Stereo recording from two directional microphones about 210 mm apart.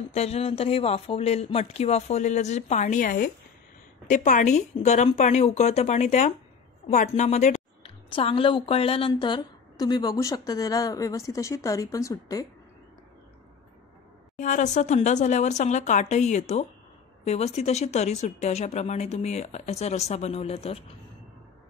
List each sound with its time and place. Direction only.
0.1 s a woman's voice: 30° left (ahead or behind)
14.4 s speech: 35° left (ahead or behind)